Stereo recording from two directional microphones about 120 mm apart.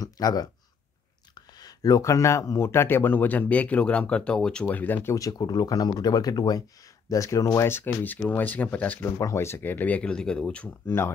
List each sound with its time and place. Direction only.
0.0 s a sound: 35° left (ahead or behind)
1.3 s speech: 35° left (ahead or behind); by 9.1 s 15° left (ahead or behind)
9.2 s speech: 25° left (ahead or behind)